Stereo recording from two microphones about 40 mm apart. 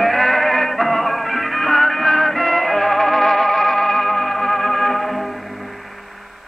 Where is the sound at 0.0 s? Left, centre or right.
Centre.